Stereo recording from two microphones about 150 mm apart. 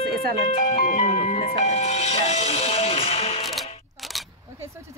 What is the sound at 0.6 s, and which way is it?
Speech, 55° left (ahead or behind).